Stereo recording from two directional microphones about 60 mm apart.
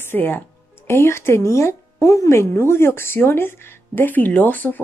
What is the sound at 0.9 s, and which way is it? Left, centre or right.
A woman's voice, left.